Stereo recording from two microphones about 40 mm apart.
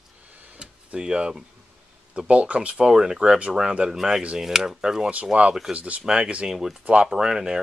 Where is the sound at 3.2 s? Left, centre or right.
Right.